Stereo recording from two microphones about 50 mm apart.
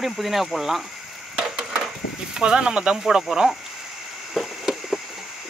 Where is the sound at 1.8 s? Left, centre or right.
Centre.